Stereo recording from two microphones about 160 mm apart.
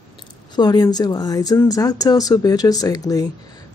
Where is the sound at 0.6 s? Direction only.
25° left (ahead or behind).